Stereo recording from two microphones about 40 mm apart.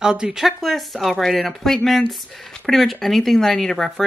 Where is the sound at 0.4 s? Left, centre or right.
Centre.